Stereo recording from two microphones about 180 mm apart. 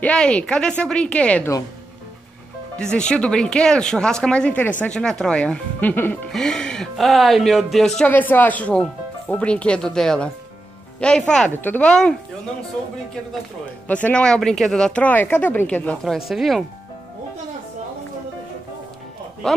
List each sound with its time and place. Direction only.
0.0 s speech: 5° left (ahead or behind)
2.8 s speech: 5° left (ahead or behind)
13.8 s speech: 10° left (ahead or behind)
19.4 s speech: 5° left (ahead or behind)